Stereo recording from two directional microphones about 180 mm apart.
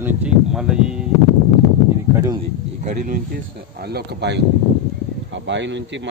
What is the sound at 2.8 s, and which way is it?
Speech, 45° right (ahead or behind).